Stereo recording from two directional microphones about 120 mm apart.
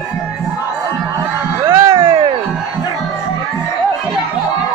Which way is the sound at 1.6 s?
30° right (ahead or behind).